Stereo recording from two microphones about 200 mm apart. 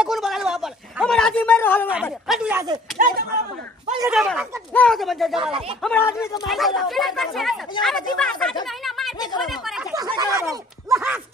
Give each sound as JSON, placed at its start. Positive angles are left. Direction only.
{"t": 0.0, "sound": "a sound", "side_deg": 0}
{"t": 2.2, "sound": "speech", "side_deg": 0}
{"t": 2.5, "sound": "speech", "side_deg": -20}
{"t": 3.0, "sound": "speech", "side_deg": -45}
{"t": 4.1, "sound": "speech", "side_deg": 0}
{"t": 8.8, "sound": "a sound", "side_deg": 0}
{"t": 9.4, "sound": "speech", "side_deg": 0}
{"t": 9.9, "sound": "speech", "side_deg": -20}